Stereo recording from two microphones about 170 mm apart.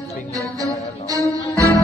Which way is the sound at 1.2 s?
20° right (ahead or behind).